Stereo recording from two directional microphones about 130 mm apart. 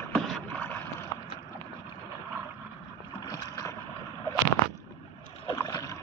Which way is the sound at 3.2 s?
30° left (ahead or behind).